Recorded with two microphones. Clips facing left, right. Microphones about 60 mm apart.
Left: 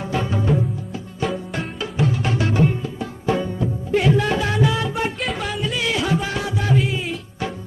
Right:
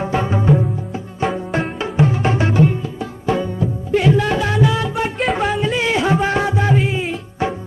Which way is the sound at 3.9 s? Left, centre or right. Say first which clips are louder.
Right 3 dB; right.